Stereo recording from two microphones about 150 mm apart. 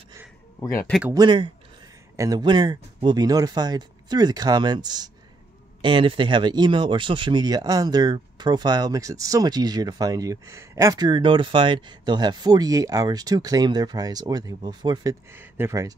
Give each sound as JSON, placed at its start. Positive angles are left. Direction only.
{"t": 0.6, "sound": "speech", "side_deg": 15}
{"t": 1.1, "sound": "speech", "side_deg": -30}
{"t": 15.3, "sound": "speech", "side_deg": -15}